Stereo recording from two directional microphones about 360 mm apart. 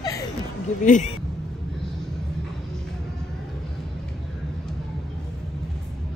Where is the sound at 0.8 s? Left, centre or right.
Left.